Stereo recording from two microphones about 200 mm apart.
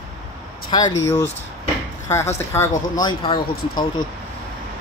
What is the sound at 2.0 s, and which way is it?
Speech, 15° left (ahead or behind).